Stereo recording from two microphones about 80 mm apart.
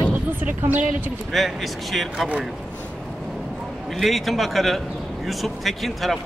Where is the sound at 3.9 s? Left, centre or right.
Centre.